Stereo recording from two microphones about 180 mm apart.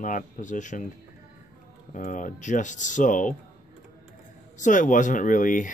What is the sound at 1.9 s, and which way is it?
Speech, 45° left (ahead or behind).